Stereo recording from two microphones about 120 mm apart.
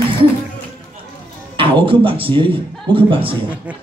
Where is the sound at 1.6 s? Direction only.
50° right (ahead or behind).